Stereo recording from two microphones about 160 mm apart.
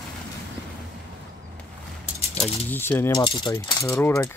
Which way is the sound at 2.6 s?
10° left (ahead or behind).